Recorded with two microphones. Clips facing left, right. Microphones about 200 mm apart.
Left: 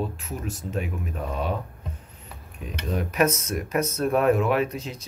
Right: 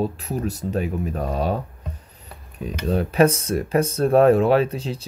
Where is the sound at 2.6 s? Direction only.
30° right (ahead or behind).